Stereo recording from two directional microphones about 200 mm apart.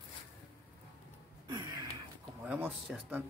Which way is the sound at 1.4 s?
20° right (ahead or behind).